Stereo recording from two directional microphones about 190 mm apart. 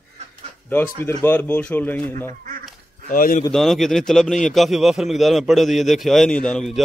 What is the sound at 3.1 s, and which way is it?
Speech, 45° left (ahead or behind).